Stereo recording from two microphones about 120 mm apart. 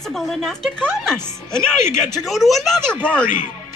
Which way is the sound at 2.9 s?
15° right (ahead or behind).